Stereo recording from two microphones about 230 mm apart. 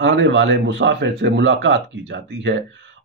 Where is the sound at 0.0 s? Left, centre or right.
Right.